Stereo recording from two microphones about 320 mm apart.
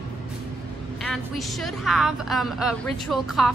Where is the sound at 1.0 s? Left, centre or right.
Centre.